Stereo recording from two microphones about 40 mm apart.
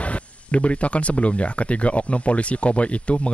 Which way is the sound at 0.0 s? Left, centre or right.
Left.